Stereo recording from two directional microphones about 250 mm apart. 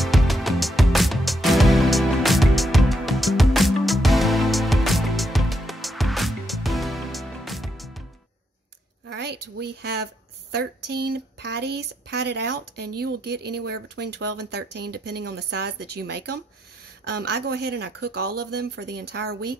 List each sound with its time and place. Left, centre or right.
0.0 s music: centre
9.0 s a sound: right
10.5 s speech: right